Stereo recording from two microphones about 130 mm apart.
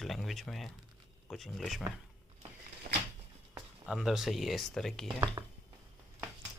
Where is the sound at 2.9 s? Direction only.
90° right.